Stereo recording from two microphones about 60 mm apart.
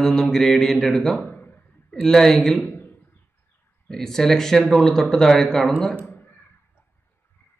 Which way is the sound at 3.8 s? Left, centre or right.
Centre.